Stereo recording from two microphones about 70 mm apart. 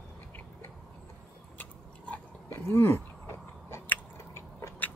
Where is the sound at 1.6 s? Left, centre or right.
Left.